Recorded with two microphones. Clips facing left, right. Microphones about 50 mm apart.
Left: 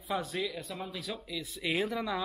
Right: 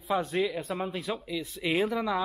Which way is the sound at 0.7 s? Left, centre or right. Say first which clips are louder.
Right 7 dB; right.